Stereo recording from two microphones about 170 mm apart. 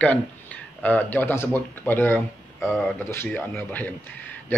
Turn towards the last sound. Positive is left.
turn(degrees=10)  # may be behind; listen again after turning